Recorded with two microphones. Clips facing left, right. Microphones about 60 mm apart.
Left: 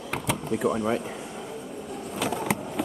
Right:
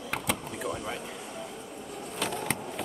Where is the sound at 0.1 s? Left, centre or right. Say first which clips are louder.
Left 5 dB; centre.